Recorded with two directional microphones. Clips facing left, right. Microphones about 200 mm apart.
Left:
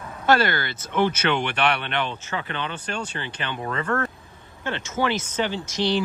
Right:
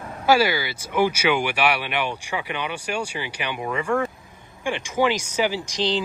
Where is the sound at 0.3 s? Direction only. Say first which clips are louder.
Right 2 dB; 5° right (ahead or behind).